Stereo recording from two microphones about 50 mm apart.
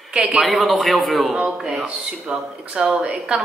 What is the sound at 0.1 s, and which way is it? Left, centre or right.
Speech, right.